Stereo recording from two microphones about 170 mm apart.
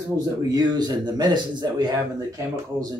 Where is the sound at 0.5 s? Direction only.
25° right (ahead or behind).